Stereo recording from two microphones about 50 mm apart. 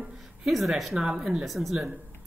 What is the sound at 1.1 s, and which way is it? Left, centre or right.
Speech, right.